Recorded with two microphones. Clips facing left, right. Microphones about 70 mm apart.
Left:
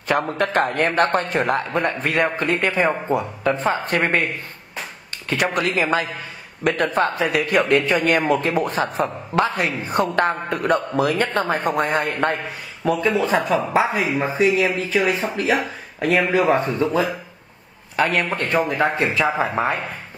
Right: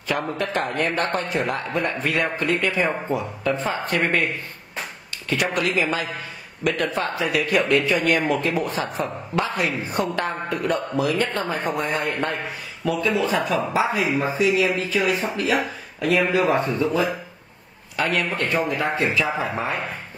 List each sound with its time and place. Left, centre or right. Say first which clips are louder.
0.4 s a man's voice: left 4 dB; left
5.3 s a man's voice: left 2 dB; left
17.9 s a man's voice: left 3 dB; left